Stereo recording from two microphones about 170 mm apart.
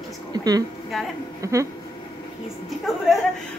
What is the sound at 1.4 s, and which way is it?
Speech, 20° right (ahead or behind).